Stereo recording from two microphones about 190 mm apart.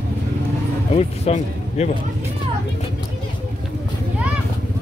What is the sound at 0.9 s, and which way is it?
Speech, 35° left (ahead or behind).